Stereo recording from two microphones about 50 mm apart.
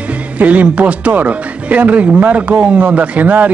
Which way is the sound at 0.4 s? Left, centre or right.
Right.